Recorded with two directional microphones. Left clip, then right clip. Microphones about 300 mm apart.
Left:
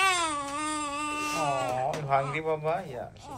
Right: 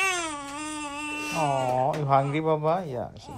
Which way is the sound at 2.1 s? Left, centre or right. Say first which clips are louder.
Right 3 dB; centre.